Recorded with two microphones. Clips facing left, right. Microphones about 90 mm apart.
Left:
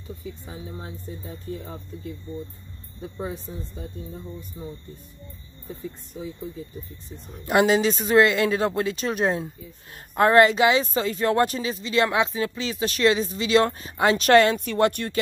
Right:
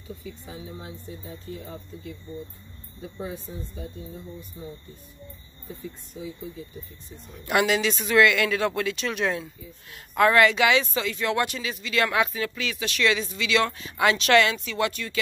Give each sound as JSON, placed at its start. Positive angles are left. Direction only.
{"t": 0.5, "sound": "speech", "side_deg": 35}
{"t": 7.4, "sound": "speech", "side_deg": 35}